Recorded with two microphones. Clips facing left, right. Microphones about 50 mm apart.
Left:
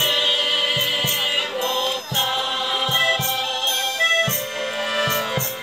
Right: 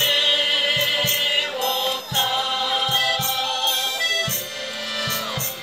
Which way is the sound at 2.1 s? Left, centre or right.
Centre.